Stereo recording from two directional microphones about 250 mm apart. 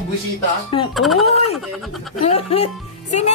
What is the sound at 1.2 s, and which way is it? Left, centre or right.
Speech, left.